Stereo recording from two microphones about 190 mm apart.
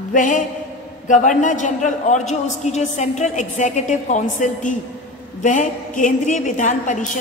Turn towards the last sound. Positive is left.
turn(degrees=40)  # may be behind; listen again after turning